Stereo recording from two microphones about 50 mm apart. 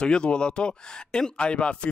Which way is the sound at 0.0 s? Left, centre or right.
Centre.